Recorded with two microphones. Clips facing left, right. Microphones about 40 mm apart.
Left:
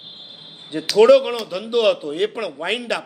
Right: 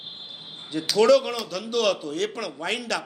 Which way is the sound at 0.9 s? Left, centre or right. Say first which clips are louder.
Left 6 dB; left.